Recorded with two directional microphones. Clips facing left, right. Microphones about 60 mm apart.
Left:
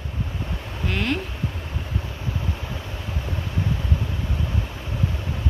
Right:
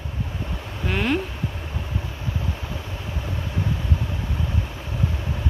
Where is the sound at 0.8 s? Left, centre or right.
Centre.